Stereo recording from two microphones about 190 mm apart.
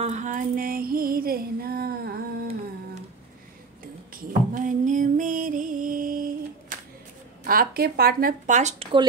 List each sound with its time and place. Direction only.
0.0 s music: 40° right (ahead or behind); by 2.5 s 55° right (ahead or behind)
4.1 s a sound: 45° right (ahead or behind)
7.4 s speech: 50° right (ahead or behind)